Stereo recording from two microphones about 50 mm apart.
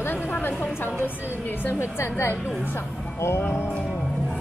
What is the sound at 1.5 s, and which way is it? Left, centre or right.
A woman's voice, left.